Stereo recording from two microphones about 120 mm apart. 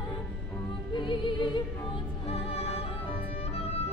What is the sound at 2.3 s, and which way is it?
Music, 55° left (ahead or behind).